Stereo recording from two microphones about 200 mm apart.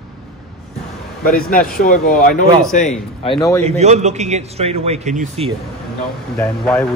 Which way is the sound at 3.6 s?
35° right (ahead or behind).